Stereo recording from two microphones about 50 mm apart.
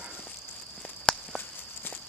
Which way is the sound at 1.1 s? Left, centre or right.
Left.